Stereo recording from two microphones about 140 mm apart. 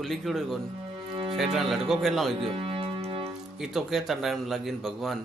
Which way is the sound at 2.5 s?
40° right (ahead or behind).